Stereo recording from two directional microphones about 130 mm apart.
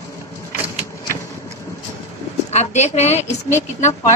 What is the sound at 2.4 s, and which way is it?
Speech, 60° left (ahead or behind).